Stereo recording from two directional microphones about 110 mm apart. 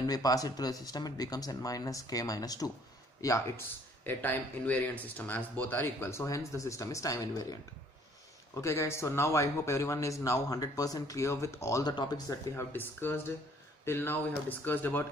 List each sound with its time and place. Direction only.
0.0 s speech: 35° left (ahead or behind)
4.0 s speech: 15° left (ahead or behind); by 7.5 s 35° left (ahead or behind)
8.5 s speech: 25° left (ahead or behind)
11.9 s speech: 40° left (ahead or behind)
12.5 s speech: 20° left (ahead or behind)